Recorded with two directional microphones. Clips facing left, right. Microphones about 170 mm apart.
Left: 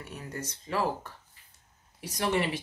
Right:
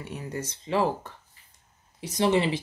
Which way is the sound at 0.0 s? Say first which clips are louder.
Right 5 dB; 20° right (ahead or behind).